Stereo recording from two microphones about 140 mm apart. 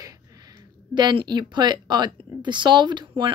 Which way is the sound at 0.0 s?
25° right (ahead or behind).